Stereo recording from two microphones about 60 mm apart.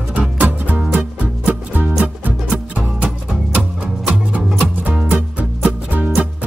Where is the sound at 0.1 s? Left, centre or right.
Right.